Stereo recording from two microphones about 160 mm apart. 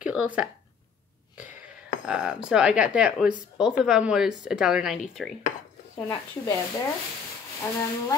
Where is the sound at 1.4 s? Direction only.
55° left (ahead or behind).